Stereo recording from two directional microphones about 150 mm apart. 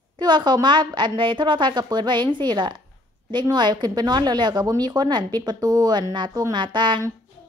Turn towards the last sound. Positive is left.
turn(degrees=-30)  # may be behind; listen again after turning